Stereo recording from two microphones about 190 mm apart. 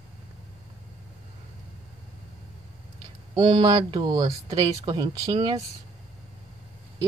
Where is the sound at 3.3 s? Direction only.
25° right (ahead or behind).